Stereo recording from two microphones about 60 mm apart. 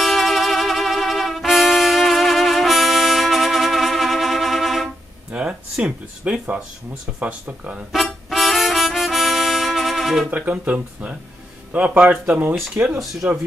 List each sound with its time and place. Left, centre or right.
0.0 s music: centre
5.3 s speech: centre
7.9 s music: centre
10.2 s speech: right
13.0 s speech: centre